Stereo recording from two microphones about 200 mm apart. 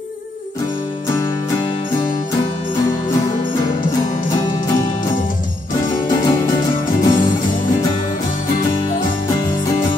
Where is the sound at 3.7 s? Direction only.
40° left (ahead or behind).